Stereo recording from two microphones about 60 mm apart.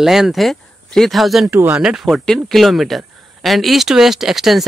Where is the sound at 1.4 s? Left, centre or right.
Right.